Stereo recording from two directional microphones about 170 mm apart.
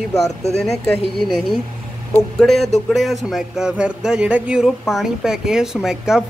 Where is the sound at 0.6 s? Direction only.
Centre (ahead or behind).